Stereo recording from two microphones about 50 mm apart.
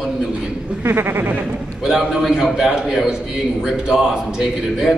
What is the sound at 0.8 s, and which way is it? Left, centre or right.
Speech, right.